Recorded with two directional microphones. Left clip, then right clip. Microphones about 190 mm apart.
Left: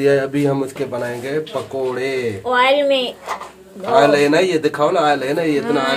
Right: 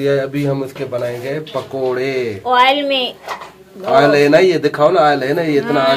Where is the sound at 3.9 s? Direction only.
30° right (ahead or behind).